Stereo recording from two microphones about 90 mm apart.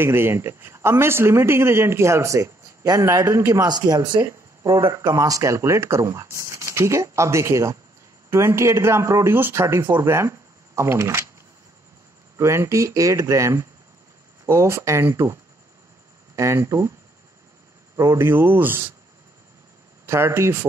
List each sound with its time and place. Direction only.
0.0 s a man's voice: 25° right (ahead or behind)
3.6 s speech: 45° right (ahead or behind)
4.3 s a man's voice: 35° right (ahead or behind)
12.4 s a man's voice: 30° right (ahead or behind)
16.3 s a man's voice: 35° right (ahead or behind)
17.9 s a man's voice: 30° right (ahead or behind)
20.1 s a man's voice: 30° right (ahead or behind)